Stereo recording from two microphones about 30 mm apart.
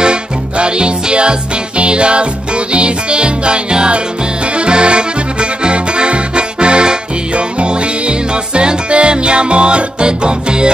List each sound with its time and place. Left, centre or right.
0.0 s music: right
4.6 s accordion: right